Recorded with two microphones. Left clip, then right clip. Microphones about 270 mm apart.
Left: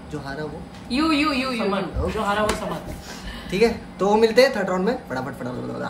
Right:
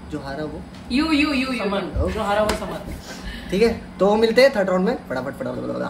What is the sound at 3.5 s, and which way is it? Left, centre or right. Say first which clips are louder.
Speech: right 1 dB; centre.